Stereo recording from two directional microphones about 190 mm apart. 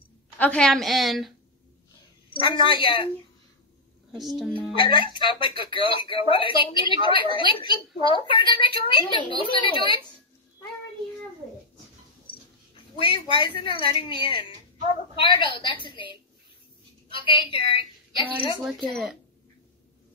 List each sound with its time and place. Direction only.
0.4 s a woman's voice: 5° left (ahead or behind)
2.3 s speech: 25° left (ahead or behind)
4.2 s a woman's voice: centre (ahead or behind)
4.7 s speech: 25° left (ahead or behind)
13.0 s a woman's voice: 25° left (ahead or behind)
18.6 s a woman's voice: centre (ahead or behind)